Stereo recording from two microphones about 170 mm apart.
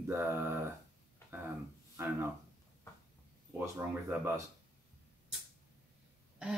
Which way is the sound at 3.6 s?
10° right (ahead or behind).